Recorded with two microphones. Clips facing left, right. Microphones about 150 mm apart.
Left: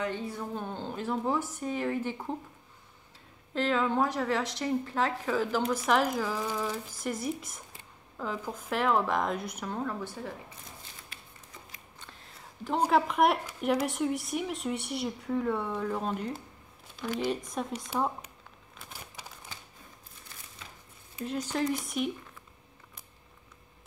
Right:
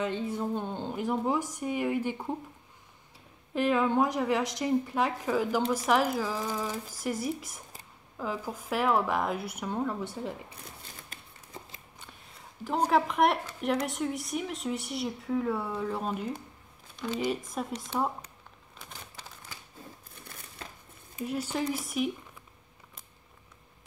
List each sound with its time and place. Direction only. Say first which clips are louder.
0.0 s a woman's voice: right 3 dB; 20° right (ahead or behind)
3.5 s a woman's voice: right 2 dB; 15° right (ahead or behind)
11.1 s a sound: right 2 dB; 45° right (ahead or behind)
12.8 s speech: even; centre (ahead or behind)
18.8 s crumpling: even; 10° left (ahead or behind)
21.3 s speech: left 1 dB; 5° right (ahead or behind)